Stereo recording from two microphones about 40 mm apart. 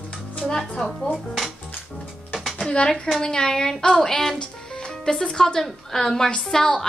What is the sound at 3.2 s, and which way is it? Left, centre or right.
A woman's voice, centre.